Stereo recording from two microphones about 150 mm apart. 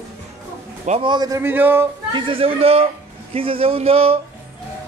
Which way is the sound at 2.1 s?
40° right (ahead or behind).